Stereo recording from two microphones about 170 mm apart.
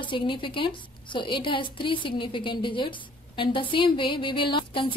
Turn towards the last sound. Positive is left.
turn(degrees=30)  # may be behind; listen again after turning